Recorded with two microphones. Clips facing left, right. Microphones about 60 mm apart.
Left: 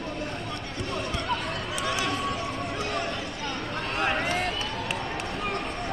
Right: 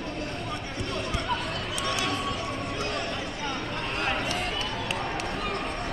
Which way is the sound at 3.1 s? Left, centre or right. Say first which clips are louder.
Even; centre.